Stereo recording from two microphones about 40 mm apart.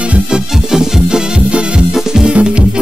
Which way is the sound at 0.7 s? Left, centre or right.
Centre.